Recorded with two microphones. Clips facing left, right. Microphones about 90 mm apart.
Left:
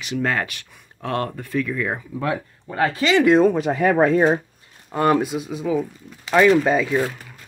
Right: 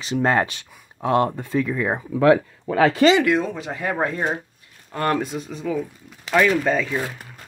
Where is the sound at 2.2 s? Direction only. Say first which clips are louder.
Right 12 dB; 90° right.